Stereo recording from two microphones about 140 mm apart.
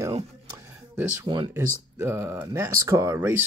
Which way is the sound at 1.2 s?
35° right (ahead or behind).